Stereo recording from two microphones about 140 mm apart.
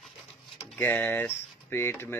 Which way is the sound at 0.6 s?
15° left (ahead or behind).